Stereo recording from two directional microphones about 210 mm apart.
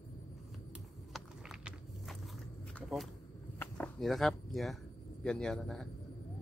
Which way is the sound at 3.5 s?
5° left (ahead or behind).